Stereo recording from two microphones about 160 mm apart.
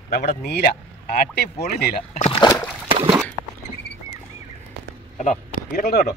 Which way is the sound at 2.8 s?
35° right (ahead or behind).